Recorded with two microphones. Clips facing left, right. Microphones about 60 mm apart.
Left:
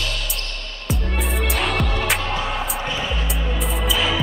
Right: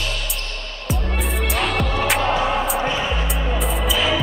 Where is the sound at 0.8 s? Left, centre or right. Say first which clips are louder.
Even; centre.